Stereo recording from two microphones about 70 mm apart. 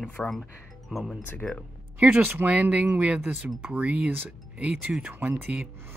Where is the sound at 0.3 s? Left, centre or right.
Centre.